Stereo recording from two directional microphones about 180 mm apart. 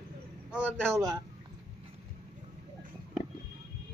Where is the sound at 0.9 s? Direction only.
20° right (ahead or behind).